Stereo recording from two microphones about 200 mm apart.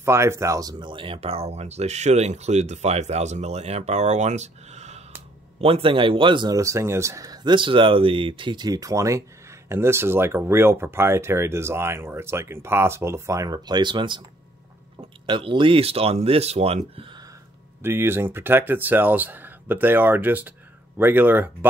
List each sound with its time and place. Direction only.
0.0 s speech: 15° right (ahead or behind); by 17.1 s 30° right (ahead or behind)
17.8 s speech: 10° right (ahead or behind)